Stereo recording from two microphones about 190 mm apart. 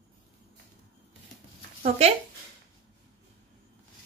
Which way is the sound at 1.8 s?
35° right (ahead or behind).